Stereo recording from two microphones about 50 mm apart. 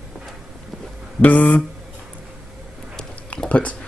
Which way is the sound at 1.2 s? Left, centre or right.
Left.